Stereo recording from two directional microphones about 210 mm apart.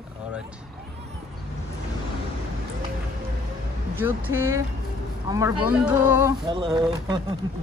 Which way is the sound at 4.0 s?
10° right (ahead or behind).